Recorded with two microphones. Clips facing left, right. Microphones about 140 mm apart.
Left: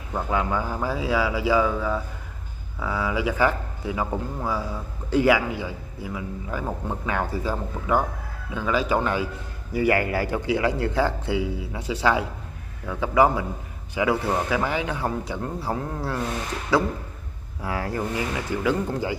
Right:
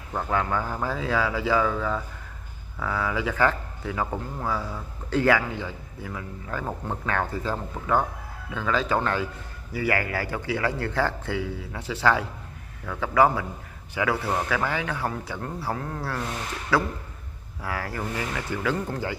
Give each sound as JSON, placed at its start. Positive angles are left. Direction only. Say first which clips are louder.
{"t": 0.3, "sound": "speech", "louder": "left 1 dB", "side_deg": 15}